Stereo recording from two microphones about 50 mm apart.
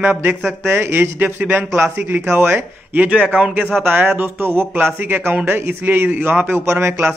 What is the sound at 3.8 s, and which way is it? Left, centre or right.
Speech, right.